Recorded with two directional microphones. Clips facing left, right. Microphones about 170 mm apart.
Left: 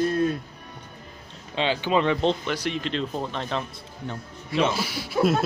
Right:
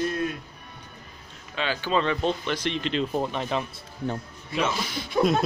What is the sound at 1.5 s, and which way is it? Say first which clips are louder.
Speech: left 3 dB; 25° left (ahead or behind).